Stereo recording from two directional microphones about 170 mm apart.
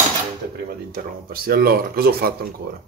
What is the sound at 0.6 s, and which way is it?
A man's voice, 60° right (ahead or behind).